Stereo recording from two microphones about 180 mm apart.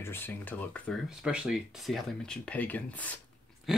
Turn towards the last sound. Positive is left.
turn(degrees=0)  # may be behind; listen again after turning